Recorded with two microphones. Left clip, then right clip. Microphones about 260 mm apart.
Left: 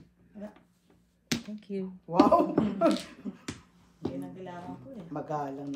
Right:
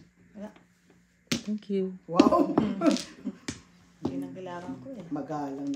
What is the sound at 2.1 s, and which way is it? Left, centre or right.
Speech, left.